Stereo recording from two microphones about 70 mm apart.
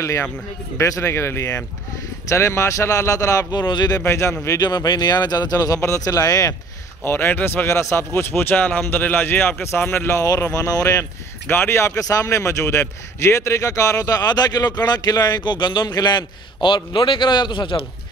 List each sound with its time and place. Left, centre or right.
0.7 s speech: left
3.5 s speech: left
4.0 s speech: left
4.6 s speech: left
5.8 s speech: left
7.1 s a man's voice: left
10.1 s a man's voice: left
11.4 s speech: left
12.0 s a man's voice: left
17.7 s a man's voice: left